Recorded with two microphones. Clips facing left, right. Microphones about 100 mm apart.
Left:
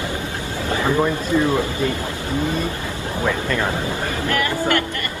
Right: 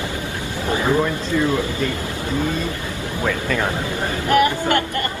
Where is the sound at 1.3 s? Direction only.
25° left (ahead or behind).